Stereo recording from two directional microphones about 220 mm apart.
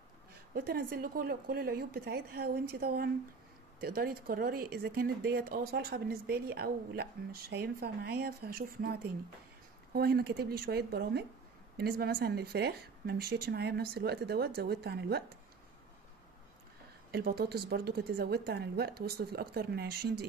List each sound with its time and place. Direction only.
0.6 s speech: 45° right (ahead or behind)
17.1 s speech: 45° right (ahead or behind)